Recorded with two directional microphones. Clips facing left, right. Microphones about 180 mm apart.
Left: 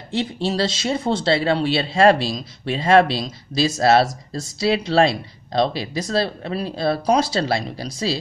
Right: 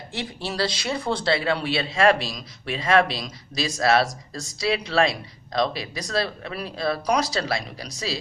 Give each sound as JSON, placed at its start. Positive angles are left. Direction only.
{"t": 0.1, "sound": "a man's voice", "side_deg": 25}